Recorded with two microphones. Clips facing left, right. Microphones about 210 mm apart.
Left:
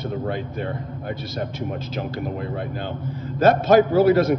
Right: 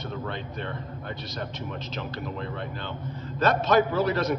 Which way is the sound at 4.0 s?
50° left (ahead or behind).